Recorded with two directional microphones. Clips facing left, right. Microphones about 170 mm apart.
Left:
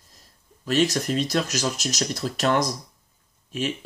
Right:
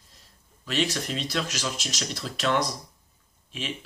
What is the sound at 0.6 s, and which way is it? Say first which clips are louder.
Speech: left 6 dB; 40° left (ahead or behind).